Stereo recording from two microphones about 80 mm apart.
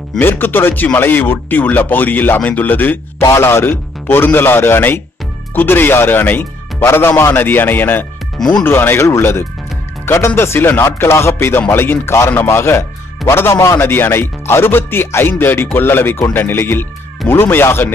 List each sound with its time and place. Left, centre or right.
0.2 s speech: left